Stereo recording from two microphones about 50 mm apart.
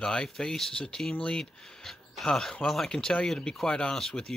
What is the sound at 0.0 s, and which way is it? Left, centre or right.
Speech, centre.